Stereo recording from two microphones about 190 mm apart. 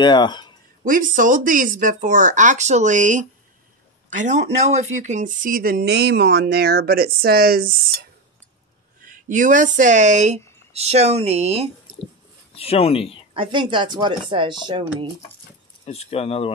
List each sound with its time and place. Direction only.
0.0 s speech: 25° left (ahead or behind)
0.8 s speech: 45° right (ahead or behind)
9.0 s speech: 45° right (ahead or behind)
12.5 s speech: 30° left (ahead or behind)
13.3 s speech: 25° right (ahead or behind)
15.8 s speech: 35° left (ahead or behind)